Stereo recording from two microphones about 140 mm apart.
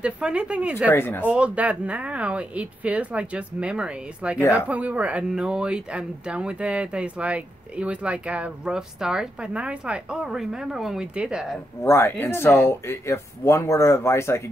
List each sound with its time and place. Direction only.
0.0 s speech: 5° right (ahead or behind)
0.9 s speech: 15° left (ahead or behind)
1.2 s speech: 10° right (ahead or behind)
11.8 s speech: 15° left (ahead or behind)